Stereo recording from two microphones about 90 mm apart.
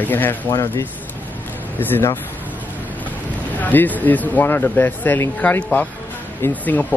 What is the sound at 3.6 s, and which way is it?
Speech, 20° left (ahead or behind).